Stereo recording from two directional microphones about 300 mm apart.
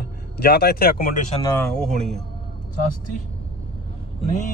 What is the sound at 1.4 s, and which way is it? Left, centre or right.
Speech, centre.